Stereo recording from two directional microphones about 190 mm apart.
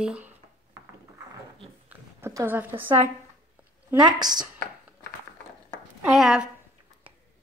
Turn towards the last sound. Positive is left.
turn(degrees=-5)  # may be behind; listen again after turning